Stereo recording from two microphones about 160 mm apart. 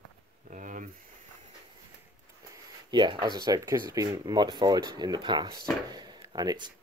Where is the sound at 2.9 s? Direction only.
30° right (ahead or behind).